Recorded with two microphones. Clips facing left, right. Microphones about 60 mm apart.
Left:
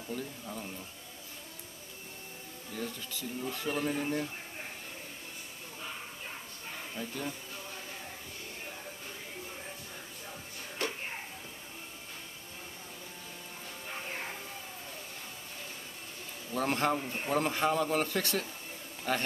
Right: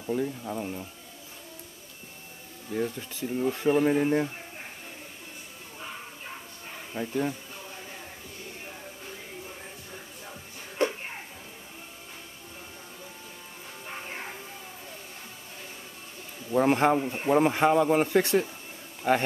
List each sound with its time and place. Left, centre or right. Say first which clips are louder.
0.0 s speech: right 10 dB; right
2.7 s speech: right 9 dB; right
7.0 s speech: right 10 dB; right
10.8 s a sound: right 9 dB; right
16.5 s speech: right 8 dB; right